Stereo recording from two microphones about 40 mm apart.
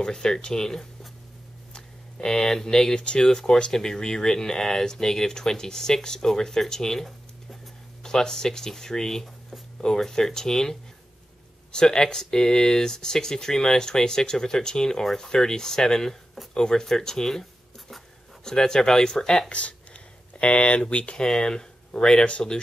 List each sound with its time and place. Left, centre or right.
0.0 s speech: centre
19.5 s a sound: left
20.8 s speech: left